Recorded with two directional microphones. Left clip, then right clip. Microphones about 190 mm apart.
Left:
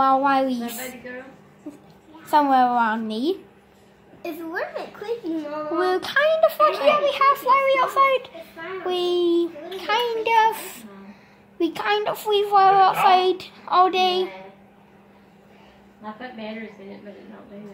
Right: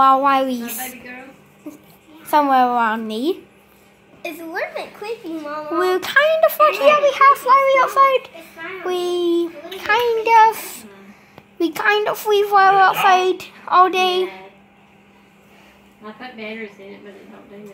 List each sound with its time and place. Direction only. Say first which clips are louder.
0.0 s a child's voice: right 5 dB; 15° right (ahead or behind)
2.2 s a child's voice: right 3 dB; 15° right (ahead or behind)
4.2 s a woman's voice: right 3 dB; 35° left (ahead or behind)
5.8 s a child's voice: right 5 dB; 15° right (ahead or behind)